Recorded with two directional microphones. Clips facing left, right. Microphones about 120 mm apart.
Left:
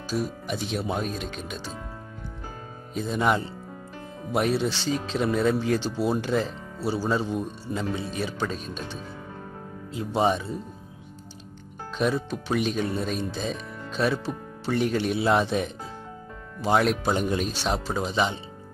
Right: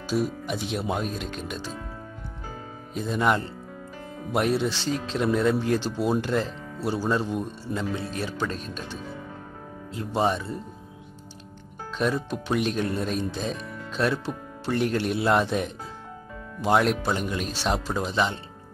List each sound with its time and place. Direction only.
0.1 s speech: centre (ahead or behind)
2.9 s speech: centre (ahead or behind)
10.1 s speech: 5° left (ahead or behind)
12.0 s speech: 5° left (ahead or behind)
17.0 s speech: 25° left (ahead or behind)
17.6 s speech: centre (ahead or behind)